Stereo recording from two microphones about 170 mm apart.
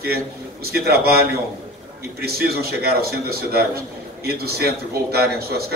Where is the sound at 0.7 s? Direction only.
65° right (ahead or behind).